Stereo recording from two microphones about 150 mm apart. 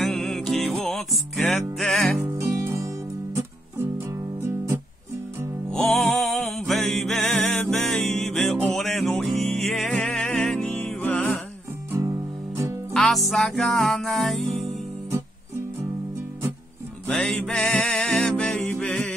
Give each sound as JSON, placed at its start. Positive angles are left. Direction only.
{"t": 0.0, "sound": "music", "side_deg": 0}
{"t": 2.6, "sound": "music", "side_deg": -15}
{"t": 5.7, "sound": "music", "side_deg": 0}
{"t": 12.9, "sound": "music", "side_deg": 0}
{"t": 17.1, "sound": "music", "side_deg": 10}